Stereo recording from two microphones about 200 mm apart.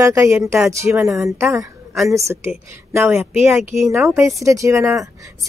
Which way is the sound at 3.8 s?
15° right (ahead or behind).